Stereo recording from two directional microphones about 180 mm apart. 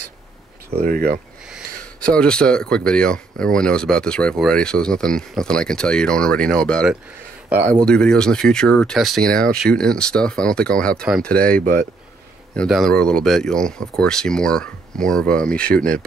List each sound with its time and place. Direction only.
0.7 s speech: 55° right (ahead or behind)
2.0 s speech: 5° left (ahead or behind)
11.6 s speech: 50° right (ahead or behind)
12.5 s speech: centre (ahead or behind)